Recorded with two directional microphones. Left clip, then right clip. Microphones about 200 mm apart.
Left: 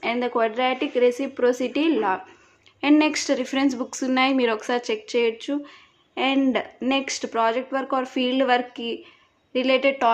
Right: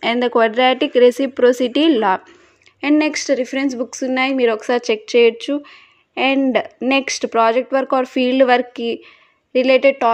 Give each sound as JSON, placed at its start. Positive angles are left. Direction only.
{"t": 0.0, "sound": "speech", "side_deg": -40}
{"t": 2.8, "sound": "speech", "side_deg": -20}